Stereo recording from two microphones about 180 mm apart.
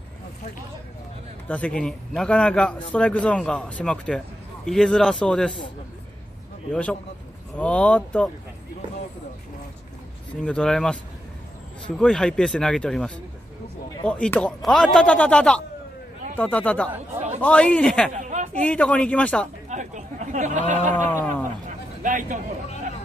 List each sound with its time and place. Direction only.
1.8 s a man's voice: 5° left (ahead or behind)
6.7 s a man's voice: 5° left (ahead or behind)
10.4 s a man's voice: 5° left (ahead or behind)
12.0 s a man's voice: 5° left (ahead or behind)
18.1 s a sound: 40° right (ahead or behind)
18.6 s a man's voice: 5° left (ahead or behind)
19.7 s speech: 40° right (ahead or behind)
21.1 s speech: 15° left (ahead or behind)
21.6 s a sound: 45° right (ahead or behind)